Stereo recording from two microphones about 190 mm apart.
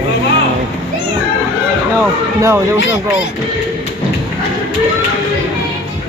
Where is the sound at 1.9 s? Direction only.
15° right (ahead or behind).